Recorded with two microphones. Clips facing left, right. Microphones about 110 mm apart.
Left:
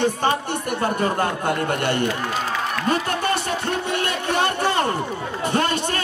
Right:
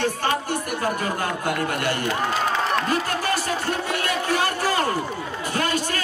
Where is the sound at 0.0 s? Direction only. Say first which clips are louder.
Left 3 dB; 25° left (ahead or behind).